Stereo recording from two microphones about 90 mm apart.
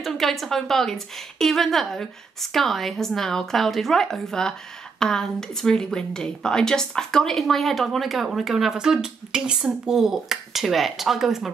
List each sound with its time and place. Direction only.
0.0 s speech: centre (ahead or behind)